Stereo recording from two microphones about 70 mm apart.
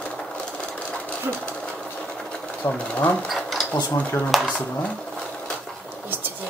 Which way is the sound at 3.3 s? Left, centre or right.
Centre.